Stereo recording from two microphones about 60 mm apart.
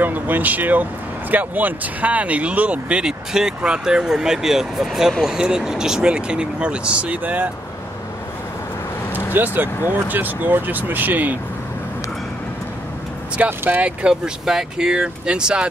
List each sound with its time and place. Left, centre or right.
0.0 s speech: right
3.1 s speech: centre
9.1 s vehicle: right
9.8 s speech: right
13.5 s speech: right
13.8 s speech: centre